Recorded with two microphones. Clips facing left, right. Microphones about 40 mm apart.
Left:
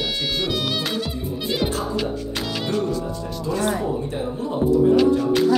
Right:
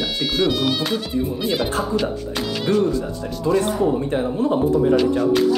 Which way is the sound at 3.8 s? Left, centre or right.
Right.